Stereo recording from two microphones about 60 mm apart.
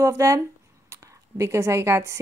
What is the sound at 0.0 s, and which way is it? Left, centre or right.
Speech, right.